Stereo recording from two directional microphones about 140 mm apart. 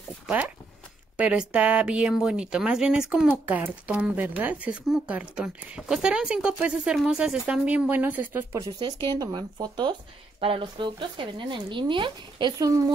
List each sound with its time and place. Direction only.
1.1 s speech: 10° right (ahead or behind); by 12.9 s 25° right (ahead or behind)